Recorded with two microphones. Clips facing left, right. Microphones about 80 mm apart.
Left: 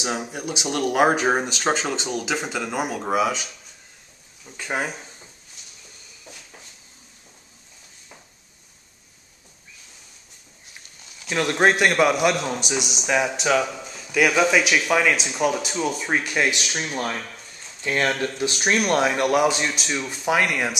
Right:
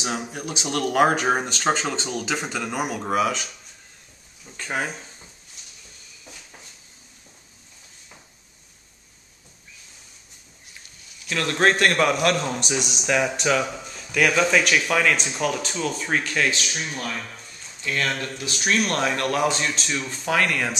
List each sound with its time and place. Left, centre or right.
0.0 s a man's voice: centre
4.5 s a man's voice: centre
11.2 s a man's voice: centre
18.8 s a man's voice: centre